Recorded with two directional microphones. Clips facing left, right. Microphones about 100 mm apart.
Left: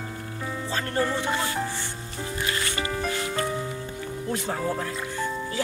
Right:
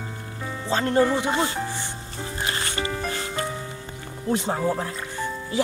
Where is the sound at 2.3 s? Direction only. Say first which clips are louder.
Right 1 dB; 30° right (ahead or behind).